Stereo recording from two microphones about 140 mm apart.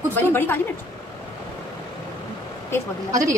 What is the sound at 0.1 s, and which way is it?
Speech, 15° left (ahead or behind).